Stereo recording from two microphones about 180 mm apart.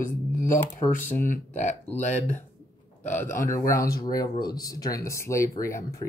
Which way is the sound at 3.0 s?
45° left (ahead or behind).